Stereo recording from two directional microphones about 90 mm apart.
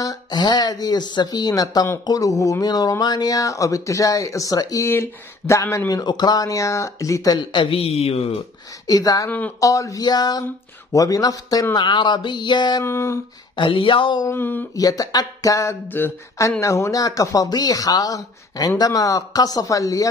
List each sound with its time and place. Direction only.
0.0 s speech: 45° left (ahead or behind)
4.8 s speech: 30° left (ahead or behind)
6.0 s speech: 50° left (ahead or behind)
6.4 s speech: 35° left (ahead or behind)
7.5 s speech: 75° left (ahead or behind)
8.8 s speech: 45° left (ahead or behind)
11.7 s a sound: 60° left (ahead or behind)
12.8 s a sound: 30° left (ahead or behind)
13.6 s speech: 70° left (ahead or behind)
14.3 s a sound: 25° left (ahead or behind)
14.8 s speech: 40° left (ahead or behind)